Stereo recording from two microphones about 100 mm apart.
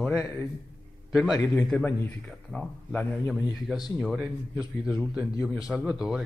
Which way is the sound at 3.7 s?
5° right (ahead or behind).